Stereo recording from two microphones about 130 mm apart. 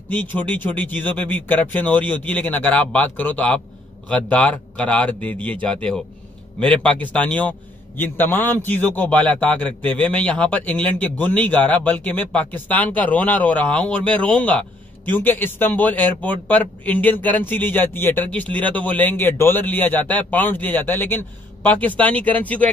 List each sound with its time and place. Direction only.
0.1 s speech: 15° left (ahead or behind)